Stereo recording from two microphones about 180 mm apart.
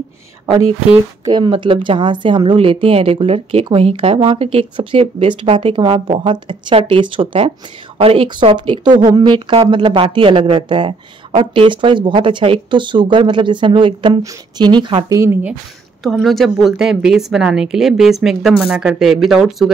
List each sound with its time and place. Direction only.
1.2 s speech: 25° right (ahead or behind)
16.0 s a woman's voice: centre (ahead or behind)